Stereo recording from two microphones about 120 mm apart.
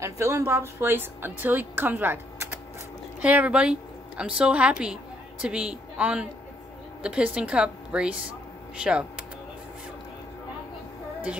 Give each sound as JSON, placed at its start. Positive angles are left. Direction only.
{"t": 0.0, "sound": "a woman's voice", "side_deg": -25}